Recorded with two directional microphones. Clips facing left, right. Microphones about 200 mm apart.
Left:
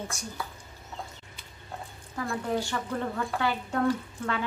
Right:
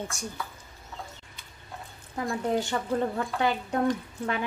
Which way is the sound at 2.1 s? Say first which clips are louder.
Right 2 dB; 25° right (ahead or behind).